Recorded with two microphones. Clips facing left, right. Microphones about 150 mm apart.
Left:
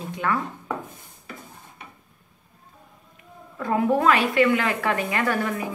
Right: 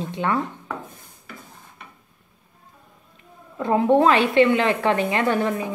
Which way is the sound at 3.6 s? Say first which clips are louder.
Right 4 dB; 25° right (ahead or behind).